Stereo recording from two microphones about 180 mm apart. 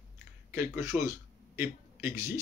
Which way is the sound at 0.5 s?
15° right (ahead or behind).